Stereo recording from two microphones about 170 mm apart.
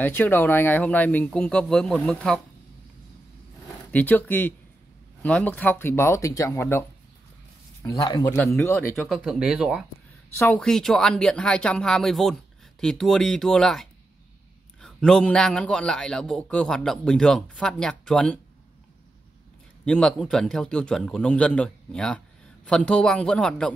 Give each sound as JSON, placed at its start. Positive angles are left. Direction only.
{"t": 0.0, "sound": "speech", "side_deg": 10}
{"t": 3.9, "sound": "speech", "side_deg": 10}
{"t": 7.8, "sound": "speech", "side_deg": 20}
{"t": 8.9, "sound": "a man's voice", "side_deg": 0}
{"t": 10.3, "sound": "a man's voice", "side_deg": 10}
{"t": 19.8, "sound": "a man's voice", "side_deg": 5}